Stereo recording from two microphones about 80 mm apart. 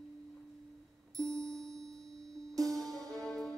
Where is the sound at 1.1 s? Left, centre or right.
Right.